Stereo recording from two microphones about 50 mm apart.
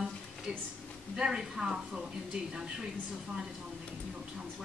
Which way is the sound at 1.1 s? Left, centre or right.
Centre.